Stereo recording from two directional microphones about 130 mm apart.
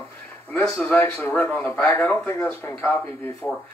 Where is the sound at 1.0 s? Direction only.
20° left (ahead or behind).